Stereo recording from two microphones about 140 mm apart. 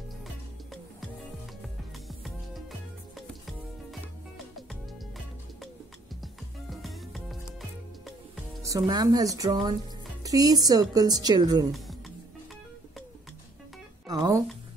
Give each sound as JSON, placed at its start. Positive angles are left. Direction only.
{"t": 2.0, "sound": "music", "side_deg": 0}
{"t": 6.2, "sound": "music", "side_deg": 0}
{"t": 8.6, "sound": "speech", "side_deg": -25}
{"t": 14.0, "sound": "music", "side_deg": -25}